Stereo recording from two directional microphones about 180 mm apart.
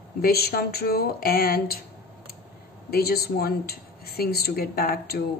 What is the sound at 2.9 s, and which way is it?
Speech, 60° left (ahead or behind).